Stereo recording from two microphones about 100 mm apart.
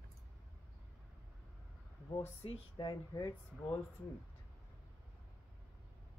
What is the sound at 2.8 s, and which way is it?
Speech, 45° left (ahead or behind).